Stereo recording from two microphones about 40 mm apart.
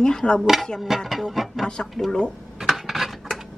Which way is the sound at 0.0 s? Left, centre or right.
Left.